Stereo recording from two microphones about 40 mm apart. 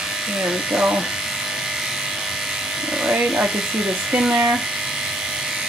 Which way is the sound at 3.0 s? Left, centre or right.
Right.